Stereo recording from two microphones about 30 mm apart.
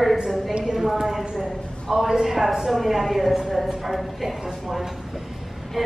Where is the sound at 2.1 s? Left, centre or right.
Centre.